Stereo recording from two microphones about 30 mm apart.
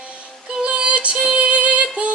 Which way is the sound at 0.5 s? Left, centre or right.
Right.